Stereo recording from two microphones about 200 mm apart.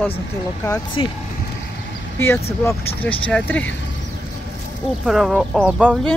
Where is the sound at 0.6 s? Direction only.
20° left (ahead or behind).